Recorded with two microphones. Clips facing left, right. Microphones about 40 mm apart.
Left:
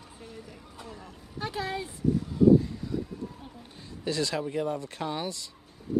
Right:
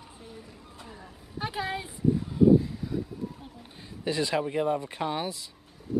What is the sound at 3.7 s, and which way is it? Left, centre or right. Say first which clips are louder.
Speech: right 1 dB; centre.